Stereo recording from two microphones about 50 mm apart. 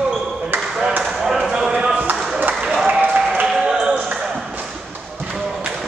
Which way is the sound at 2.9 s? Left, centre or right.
Right.